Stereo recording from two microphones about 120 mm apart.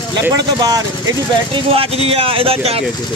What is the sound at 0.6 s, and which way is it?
Speech, 30° right (ahead or behind).